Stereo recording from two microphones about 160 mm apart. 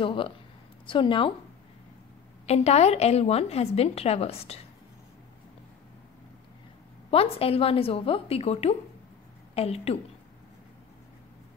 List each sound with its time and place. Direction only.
0.0 s a woman's voice: 35° left (ahead or behind)
2.4 s a woman's voice: 40° left (ahead or behind)
7.1 s a woman's voice: 35° left (ahead or behind)